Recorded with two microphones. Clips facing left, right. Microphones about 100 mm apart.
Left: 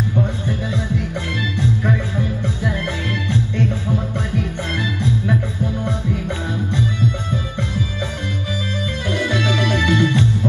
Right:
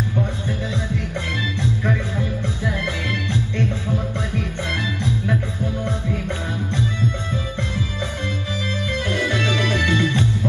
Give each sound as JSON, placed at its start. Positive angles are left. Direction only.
{"t": 5.9, "sound": "music", "side_deg": 15}
{"t": 9.1, "sound": "music", "side_deg": 15}